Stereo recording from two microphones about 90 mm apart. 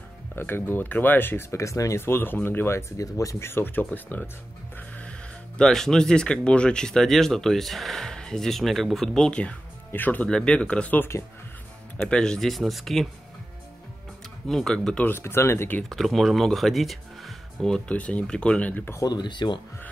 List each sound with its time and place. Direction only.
0.4 s speech: 25° left (ahead or behind)
3.0 s speech: 40° left (ahead or behind)
3.4 s speech: 25° left (ahead or behind)
5.6 s speech: 5° left (ahead or behind)
14.5 s speech: 5° left (ahead or behind)
15.0 s speech: 25° left (ahead or behind)
15.9 s speech: centre (ahead or behind); by 18.9 s 20° left (ahead or behind)
18.9 s speech: 50° left (ahead or behind)